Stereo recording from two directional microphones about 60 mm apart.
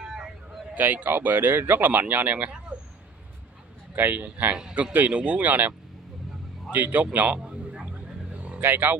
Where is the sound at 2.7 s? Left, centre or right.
Centre.